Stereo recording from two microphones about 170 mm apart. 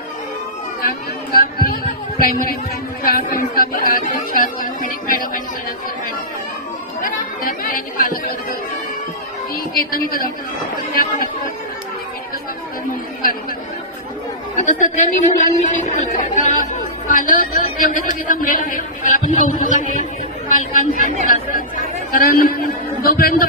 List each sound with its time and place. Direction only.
0.8 s speech: 60° left (ahead or behind)
7.0 s speech: 55° left (ahead or behind)
9.8 s speech: 60° left (ahead or behind)
14.6 s speech: 50° left (ahead or behind)